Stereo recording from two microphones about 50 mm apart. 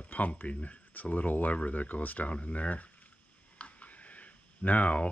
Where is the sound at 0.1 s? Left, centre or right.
Left.